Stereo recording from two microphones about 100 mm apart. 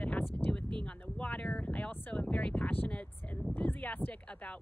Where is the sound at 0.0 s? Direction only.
15° left (ahead or behind).